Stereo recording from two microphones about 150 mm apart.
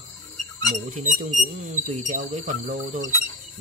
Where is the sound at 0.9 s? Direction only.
55° right (ahead or behind).